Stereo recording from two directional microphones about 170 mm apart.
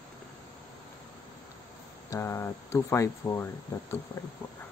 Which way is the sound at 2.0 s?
15° left (ahead or behind).